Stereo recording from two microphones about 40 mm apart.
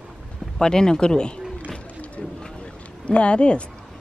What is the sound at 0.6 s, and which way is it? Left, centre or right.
Speech, centre.